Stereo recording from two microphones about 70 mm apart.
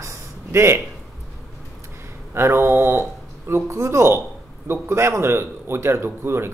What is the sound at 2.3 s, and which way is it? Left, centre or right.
Speech, right.